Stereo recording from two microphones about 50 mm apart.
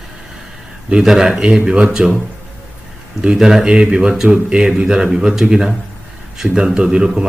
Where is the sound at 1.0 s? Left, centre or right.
Centre.